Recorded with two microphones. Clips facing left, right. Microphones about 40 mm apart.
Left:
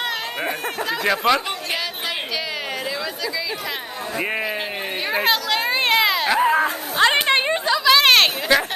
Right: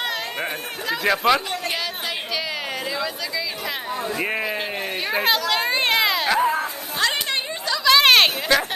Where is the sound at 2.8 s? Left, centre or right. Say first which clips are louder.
Even; centre.